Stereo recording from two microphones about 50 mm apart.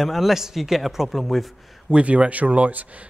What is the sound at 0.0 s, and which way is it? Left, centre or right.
A man's voice, centre.